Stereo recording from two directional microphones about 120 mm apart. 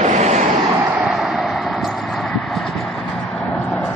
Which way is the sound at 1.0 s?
Centre (ahead or behind).